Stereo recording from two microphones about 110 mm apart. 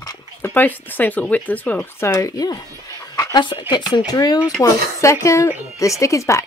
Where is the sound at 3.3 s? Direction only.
45° left (ahead or behind).